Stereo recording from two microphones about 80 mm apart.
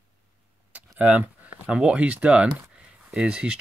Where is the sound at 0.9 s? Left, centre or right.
Right.